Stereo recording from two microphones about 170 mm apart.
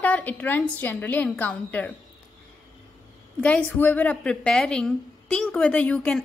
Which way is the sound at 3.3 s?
5° left (ahead or behind).